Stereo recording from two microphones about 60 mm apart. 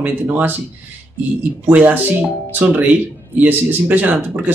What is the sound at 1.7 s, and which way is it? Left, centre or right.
Speech, right.